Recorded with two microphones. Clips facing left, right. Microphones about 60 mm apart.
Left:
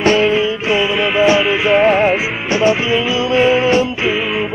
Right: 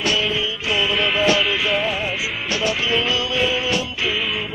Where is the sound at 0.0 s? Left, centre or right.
Left.